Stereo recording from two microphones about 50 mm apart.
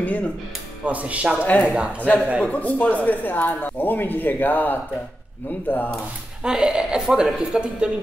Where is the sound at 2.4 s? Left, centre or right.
Left.